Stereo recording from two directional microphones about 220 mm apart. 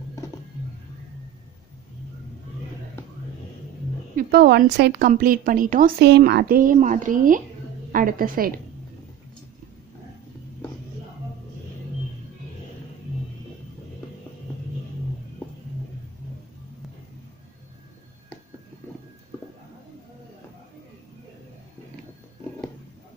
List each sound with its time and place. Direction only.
4.2 s a woman's voice: 45° right (ahead or behind)